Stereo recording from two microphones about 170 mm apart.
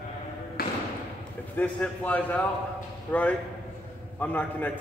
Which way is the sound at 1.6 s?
10° left (ahead or behind).